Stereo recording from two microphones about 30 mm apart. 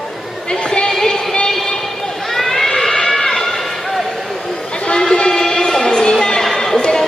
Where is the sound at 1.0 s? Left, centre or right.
Left.